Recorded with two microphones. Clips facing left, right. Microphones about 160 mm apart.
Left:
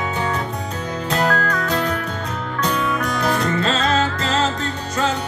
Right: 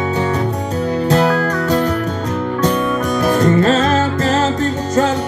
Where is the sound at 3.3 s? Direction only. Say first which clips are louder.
Right 8 dB; 45° right (ahead or behind).